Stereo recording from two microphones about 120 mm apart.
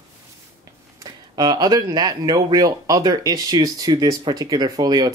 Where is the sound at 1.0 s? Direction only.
35° right (ahead or behind).